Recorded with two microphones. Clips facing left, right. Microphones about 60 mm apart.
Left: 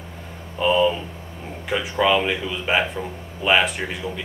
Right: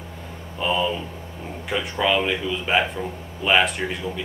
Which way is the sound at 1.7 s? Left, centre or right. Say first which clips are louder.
Left 3 dB; centre.